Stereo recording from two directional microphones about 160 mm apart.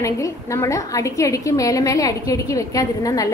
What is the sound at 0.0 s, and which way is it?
A woman's voice, 20° left (ahead or behind).